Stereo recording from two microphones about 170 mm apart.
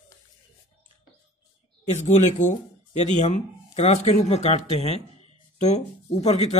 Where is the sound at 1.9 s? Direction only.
45° left (ahead or behind).